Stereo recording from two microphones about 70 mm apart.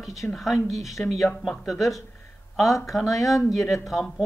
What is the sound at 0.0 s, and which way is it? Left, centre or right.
Speech, centre.